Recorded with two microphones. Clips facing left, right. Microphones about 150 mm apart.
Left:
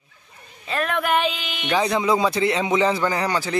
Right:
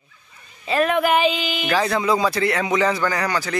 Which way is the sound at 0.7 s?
5° right (ahead or behind).